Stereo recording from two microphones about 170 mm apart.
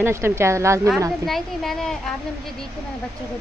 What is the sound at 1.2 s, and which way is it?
Speech, centre (ahead or behind).